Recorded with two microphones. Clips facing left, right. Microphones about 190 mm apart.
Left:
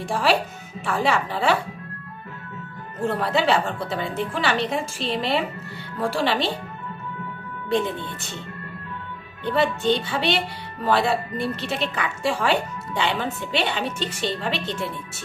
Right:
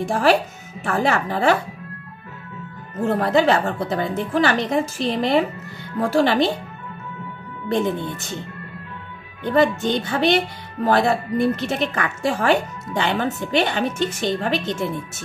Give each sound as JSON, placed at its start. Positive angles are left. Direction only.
{"t": 0.0, "sound": "a woman's voice", "side_deg": -45}
{"t": 3.2, "sound": "a woman's voice", "side_deg": -45}
{"t": 9.4, "sound": "a woman's voice", "side_deg": -45}